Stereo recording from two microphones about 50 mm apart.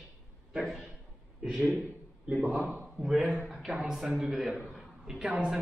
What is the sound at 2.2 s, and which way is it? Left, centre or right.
A man's voice, centre.